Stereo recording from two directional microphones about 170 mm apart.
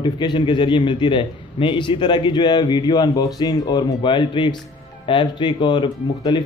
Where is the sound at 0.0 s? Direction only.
25° left (ahead or behind).